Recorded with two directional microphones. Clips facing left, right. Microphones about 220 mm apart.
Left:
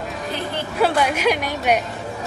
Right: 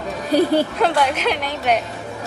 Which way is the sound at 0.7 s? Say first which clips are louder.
Even; 10° left (ahead or behind).